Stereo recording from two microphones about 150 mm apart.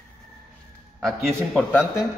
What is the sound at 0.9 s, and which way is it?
Speech, centre (ahead or behind).